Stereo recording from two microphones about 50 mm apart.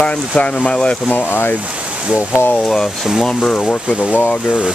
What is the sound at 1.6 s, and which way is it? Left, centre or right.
Speech, right.